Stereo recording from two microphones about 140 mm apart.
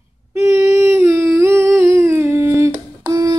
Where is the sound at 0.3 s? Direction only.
20° right (ahead or behind).